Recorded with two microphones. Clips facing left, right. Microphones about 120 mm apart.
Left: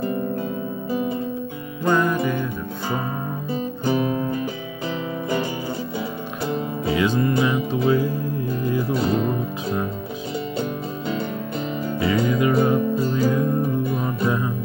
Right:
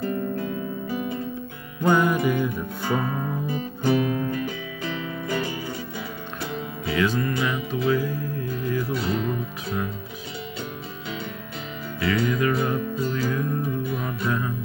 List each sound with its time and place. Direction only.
1.9 s music: 10° right (ahead or behind)
3.4 s music: 25° left (ahead or behind)
6.9 s music: 20° left (ahead or behind)
8.9 s music: 45° left (ahead or behind)
12.0 s music: 15° left (ahead or behind)